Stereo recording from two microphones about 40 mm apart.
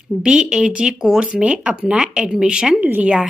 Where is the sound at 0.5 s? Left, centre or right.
Right.